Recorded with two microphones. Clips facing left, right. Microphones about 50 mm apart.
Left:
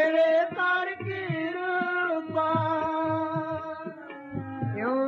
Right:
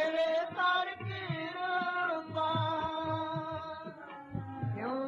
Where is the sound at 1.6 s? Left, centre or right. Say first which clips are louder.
Left 3 dB; left.